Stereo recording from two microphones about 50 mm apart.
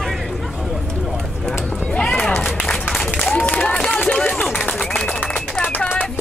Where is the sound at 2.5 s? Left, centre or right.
Centre.